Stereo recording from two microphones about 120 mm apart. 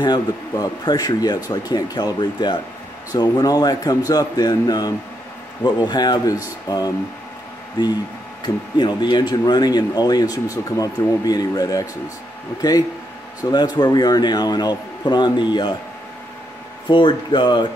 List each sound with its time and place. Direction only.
0.0 s speech: 35° left (ahead or behind)
8.7 s speech: 40° left (ahead or behind)
13.4 s speech: 35° left (ahead or behind)
16.8 s speech: 40° left (ahead or behind)